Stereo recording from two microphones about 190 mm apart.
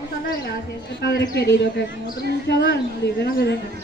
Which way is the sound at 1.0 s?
60° left (ahead or behind).